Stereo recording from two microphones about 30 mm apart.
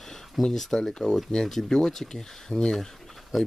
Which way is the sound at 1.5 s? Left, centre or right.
Centre.